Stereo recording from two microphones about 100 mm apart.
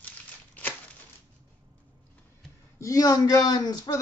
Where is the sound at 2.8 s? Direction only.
35° left (ahead or behind).